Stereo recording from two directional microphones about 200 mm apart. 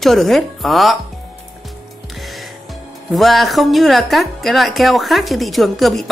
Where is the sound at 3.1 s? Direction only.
Centre (ahead or behind).